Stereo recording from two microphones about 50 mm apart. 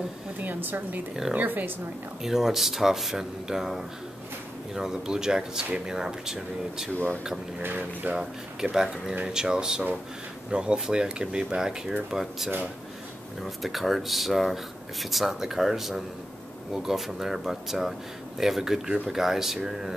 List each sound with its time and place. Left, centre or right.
0.4 s speech: right
2.2 s speech: centre
7.6 s speech: right
8.1 s speech: centre